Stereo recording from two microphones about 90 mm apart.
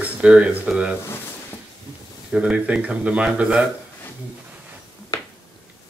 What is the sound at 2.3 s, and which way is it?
Speech, 10° right (ahead or behind).